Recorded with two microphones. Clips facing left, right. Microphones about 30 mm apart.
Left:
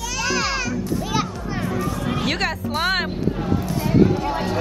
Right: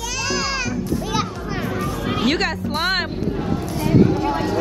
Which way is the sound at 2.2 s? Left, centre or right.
Centre.